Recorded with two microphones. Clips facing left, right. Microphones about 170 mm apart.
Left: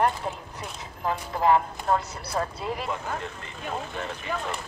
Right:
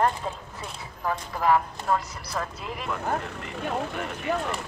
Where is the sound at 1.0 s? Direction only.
25° left (ahead or behind).